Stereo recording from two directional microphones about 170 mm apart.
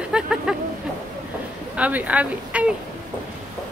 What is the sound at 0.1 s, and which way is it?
Speech, 5° right (ahead or behind).